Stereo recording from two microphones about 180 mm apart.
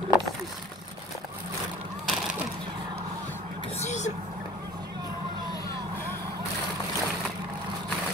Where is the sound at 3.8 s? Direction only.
40° left (ahead or behind).